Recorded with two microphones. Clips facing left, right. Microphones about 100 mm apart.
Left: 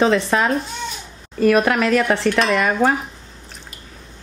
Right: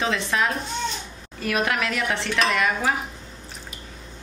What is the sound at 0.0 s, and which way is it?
Speech, 40° left (ahead or behind).